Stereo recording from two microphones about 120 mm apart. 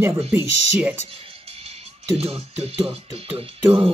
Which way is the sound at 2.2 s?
55° right (ahead or behind).